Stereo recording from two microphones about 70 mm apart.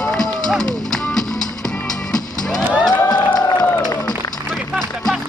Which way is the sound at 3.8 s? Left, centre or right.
Left.